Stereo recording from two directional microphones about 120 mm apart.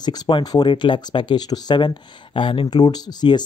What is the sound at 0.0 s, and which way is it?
Speech, 35° left (ahead or behind).